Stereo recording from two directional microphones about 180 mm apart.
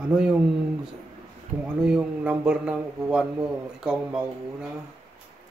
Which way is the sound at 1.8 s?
5° right (ahead or behind).